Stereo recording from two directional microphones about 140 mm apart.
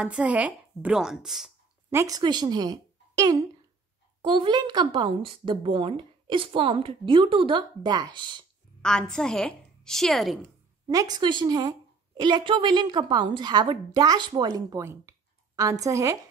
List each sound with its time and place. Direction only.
0.0 s a woman's voice: 10° right (ahead or behind)
1.9 s a child's voice: 20° right (ahead or behind)
4.2 s a woman's voice: 35° right (ahead or behind)
8.8 s a woman's voice: 5° left (ahead or behind)
10.9 s a woman's voice: 25° right (ahead or behind)